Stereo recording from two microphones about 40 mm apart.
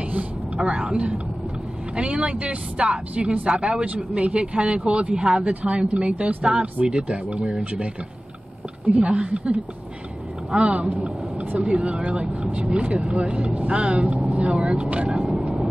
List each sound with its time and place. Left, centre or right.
0.6 s speech: right
5.4 s a woman's voice: right
9.0 s speech: right
10.5 s speech: right
14.0 s speech: right